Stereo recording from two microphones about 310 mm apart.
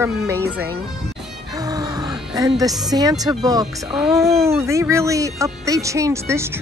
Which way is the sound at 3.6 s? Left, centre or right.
Centre.